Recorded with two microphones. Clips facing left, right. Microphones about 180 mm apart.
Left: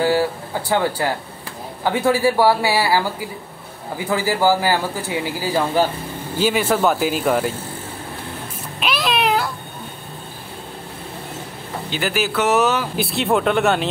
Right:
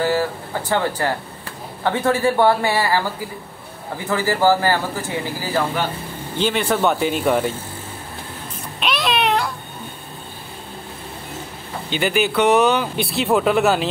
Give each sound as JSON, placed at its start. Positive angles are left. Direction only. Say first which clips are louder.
{"t": 0.0, "sound": "speech", "louder": "left 2 dB", "side_deg": 10}
{"t": 4.1, "sound": "speech", "louder": "right 1 dB", "side_deg": 10}
{"t": 5.8, "sound": "speech", "louder": "left 5 dB", "side_deg": 35}
{"t": 6.3, "sound": "speech", "louder": "left 2 dB", "side_deg": 5}
{"t": 8.7, "sound": "a sound", "louder": "even", "side_deg": 0}
{"t": 11.9, "sound": "speech", "louder": "right 3 dB", "side_deg": 0}